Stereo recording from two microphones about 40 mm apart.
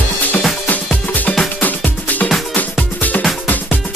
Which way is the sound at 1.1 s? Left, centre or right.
Left.